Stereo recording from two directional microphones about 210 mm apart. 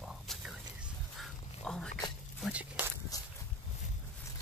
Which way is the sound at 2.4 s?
5° right (ahead or behind).